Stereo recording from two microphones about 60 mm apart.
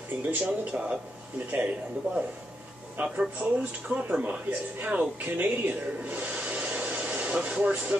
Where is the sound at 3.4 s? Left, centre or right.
Centre.